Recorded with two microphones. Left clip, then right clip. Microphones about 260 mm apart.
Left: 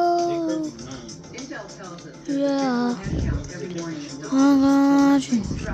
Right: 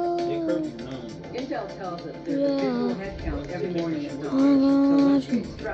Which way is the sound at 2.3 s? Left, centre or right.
Left.